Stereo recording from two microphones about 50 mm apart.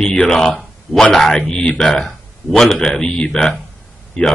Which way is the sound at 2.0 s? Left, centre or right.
Centre.